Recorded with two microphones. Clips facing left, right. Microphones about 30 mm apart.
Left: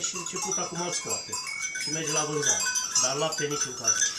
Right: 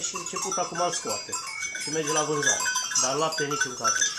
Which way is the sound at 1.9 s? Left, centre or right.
Right.